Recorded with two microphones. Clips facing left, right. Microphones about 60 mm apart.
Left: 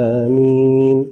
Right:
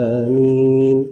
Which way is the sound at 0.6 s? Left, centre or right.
Centre.